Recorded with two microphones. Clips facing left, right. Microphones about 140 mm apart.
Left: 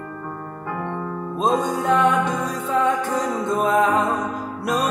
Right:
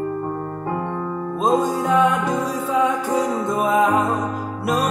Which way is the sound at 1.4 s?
5° right (ahead or behind).